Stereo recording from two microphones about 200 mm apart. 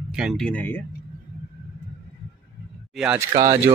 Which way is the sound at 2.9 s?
5° right (ahead or behind).